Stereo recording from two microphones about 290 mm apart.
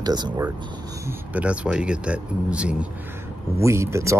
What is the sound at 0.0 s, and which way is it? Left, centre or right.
Speech, centre.